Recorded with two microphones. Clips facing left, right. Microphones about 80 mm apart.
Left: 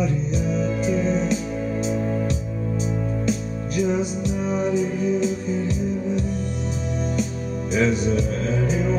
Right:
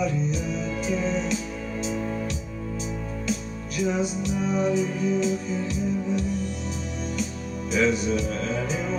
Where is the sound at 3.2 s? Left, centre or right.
Left.